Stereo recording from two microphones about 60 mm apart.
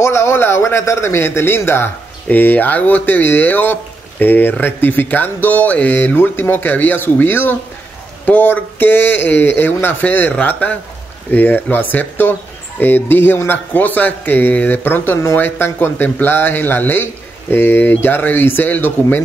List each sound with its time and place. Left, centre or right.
0.0 s a man's voice: left